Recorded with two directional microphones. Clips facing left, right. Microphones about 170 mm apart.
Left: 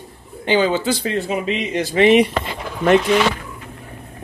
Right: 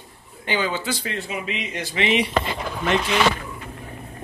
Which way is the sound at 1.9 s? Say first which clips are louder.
Left 9 dB; 45° left (ahead or behind).